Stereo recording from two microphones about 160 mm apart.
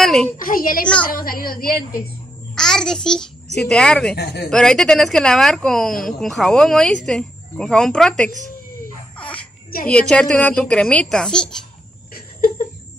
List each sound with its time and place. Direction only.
0.0 s a woman's voice: centre (ahead or behind)
0.5 s a woman's voice: 60° left (ahead or behind)
2.5 s a child's voice: 5° left (ahead or behind)
4.1 s speech: 85° left
4.5 s speech: 5° left (ahead or behind)
9.2 s a sound: 10° left (ahead or behind)
9.8 s speech: 5° left (ahead or behind)